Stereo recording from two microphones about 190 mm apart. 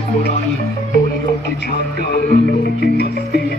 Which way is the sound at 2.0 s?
55° left (ahead or behind).